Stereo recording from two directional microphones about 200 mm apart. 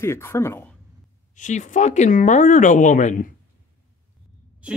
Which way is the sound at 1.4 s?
40° left (ahead or behind).